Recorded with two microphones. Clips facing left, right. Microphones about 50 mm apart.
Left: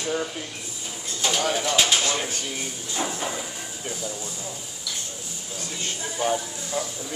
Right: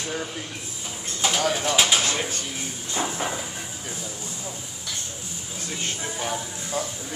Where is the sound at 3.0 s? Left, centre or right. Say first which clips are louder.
Even; centre.